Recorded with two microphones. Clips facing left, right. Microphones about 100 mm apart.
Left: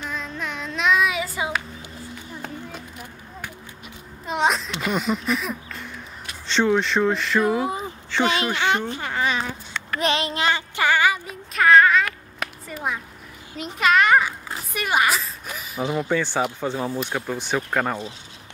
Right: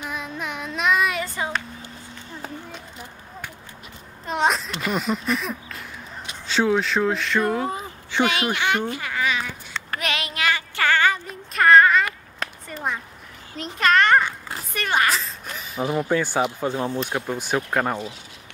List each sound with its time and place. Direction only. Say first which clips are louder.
0.0 s child singing: even; 10° right (ahead or behind); by 1.9 s 5° left (ahead or behind)
4.3 s a child's voice: even; centre (ahead or behind)
8.1 s speech: even; 15° right (ahead or behind)
8.5 s speech: left 1 dB; 20° left (ahead or behind)
8.9 s babbling: left 1 dB; 30° left (ahead or behind)
9.9 s child singing: left 5 dB; 30° left (ahead or behind)
10.8 s a sound: even; 10° left (ahead or behind)
16.1 s a child's voice: right 1 dB; 10° right (ahead or behind)
17.1 s speech: right 1 dB; 10° right (ahead or behind)